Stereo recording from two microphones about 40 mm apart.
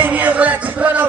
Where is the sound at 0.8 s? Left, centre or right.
Right.